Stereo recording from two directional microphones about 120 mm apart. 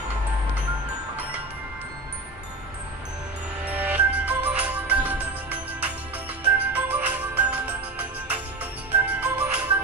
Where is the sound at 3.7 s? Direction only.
10° right (ahead or behind).